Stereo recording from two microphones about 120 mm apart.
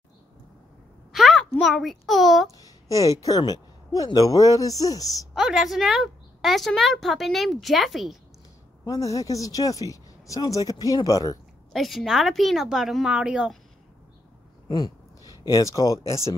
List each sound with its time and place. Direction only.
1.1 s a child's voice: centre (ahead or behind)
2.5 s speech: 30° left (ahead or behind)
5.3 s a woman's voice: 5° right (ahead or behind)
8.8 s speech: 30° left (ahead or behind)
11.7 s a woman's voice: centre (ahead or behind)
14.7 s a sound: 35° left (ahead or behind)
15.4 s speech: 25° left (ahead or behind)